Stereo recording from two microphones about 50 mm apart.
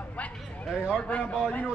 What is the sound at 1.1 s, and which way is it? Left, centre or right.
Speech, left.